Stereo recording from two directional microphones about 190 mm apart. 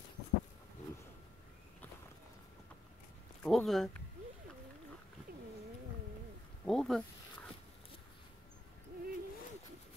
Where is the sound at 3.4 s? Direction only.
5° left (ahead or behind).